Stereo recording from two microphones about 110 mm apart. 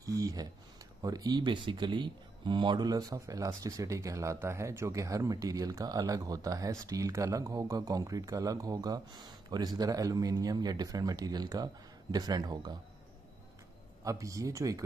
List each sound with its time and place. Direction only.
0.0 s a sound: 30° right (ahead or behind)
1.0 s speech: 35° right (ahead or behind)
14.0 s speech: 30° right (ahead or behind)